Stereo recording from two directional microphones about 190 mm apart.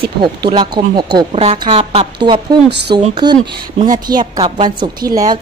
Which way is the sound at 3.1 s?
20° right (ahead or behind).